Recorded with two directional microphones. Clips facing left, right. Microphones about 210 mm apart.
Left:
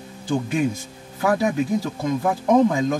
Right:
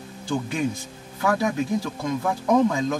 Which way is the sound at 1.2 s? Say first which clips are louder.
Left 3 dB; 20° left (ahead or behind).